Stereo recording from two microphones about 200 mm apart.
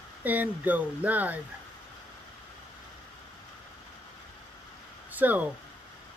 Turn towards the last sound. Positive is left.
turn(degrees=-10)  # may be behind; listen again after turning